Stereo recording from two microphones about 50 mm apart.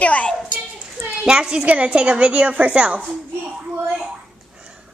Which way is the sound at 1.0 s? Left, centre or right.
Centre.